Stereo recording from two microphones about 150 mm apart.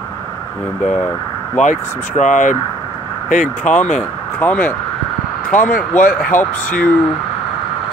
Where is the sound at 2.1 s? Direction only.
55° left (ahead or behind).